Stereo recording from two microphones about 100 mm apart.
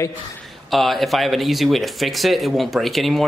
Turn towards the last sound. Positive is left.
turn(degrees=0)  # may be behind; listen again after turning